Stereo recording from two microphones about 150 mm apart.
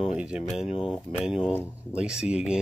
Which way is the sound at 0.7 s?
35° left (ahead or behind).